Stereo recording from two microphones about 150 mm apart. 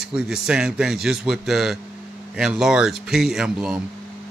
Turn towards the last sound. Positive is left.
turn(degrees=-5)  # may be behind; listen again after turning